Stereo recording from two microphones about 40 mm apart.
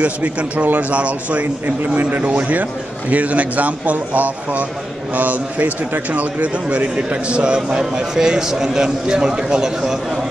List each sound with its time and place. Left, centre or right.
0.0 s speech: right
1.8 s a man's voice: right; by 9.9 s centre